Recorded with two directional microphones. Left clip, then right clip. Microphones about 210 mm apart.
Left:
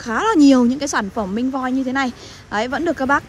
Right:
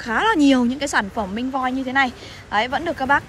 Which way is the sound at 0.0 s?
25° left (ahead or behind).